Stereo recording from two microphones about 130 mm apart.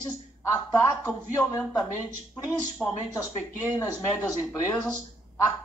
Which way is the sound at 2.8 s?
10° left (ahead or behind).